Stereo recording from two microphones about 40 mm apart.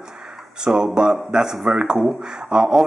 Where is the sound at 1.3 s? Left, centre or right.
Centre.